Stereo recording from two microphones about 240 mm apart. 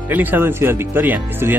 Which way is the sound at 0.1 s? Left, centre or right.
Centre.